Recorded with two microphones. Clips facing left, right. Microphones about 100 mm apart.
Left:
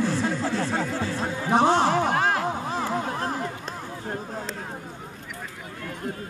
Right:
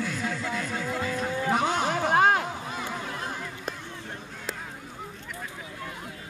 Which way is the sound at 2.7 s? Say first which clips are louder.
Left 7 dB; 35° left (ahead or behind).